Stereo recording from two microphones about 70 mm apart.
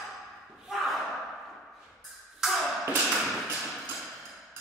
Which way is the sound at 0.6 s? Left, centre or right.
Centre.